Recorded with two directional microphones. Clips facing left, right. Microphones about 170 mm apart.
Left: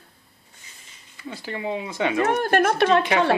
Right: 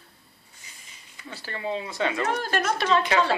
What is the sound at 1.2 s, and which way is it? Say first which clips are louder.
Speech: left 3 dB; 15° left (ahead or behind).